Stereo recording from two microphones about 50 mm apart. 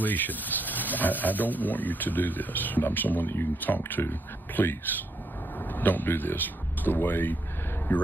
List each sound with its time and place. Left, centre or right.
0.0 s speech: left